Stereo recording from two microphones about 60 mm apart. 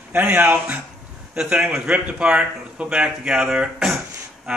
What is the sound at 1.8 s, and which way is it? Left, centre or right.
Speech, right.